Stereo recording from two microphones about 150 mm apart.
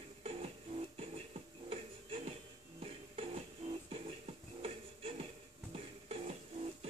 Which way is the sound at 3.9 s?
40° right (ahead or behind).